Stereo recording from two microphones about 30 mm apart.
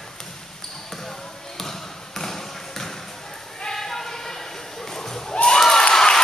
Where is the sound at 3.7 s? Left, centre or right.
Centre.